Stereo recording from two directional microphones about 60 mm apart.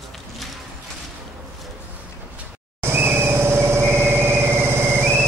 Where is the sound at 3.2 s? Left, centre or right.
Right.